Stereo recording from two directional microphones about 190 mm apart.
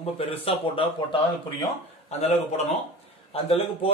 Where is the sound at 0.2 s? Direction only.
30° left (ahead or behind).